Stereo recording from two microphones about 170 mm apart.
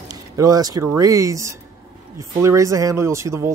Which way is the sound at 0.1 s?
20° right (ahead or behind).